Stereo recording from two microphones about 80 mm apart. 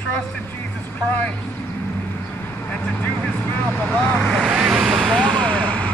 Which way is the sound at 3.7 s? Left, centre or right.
Left.